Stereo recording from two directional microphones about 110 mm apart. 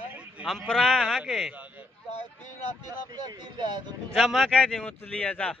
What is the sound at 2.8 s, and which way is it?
Speech, 35° right (ahead or behind).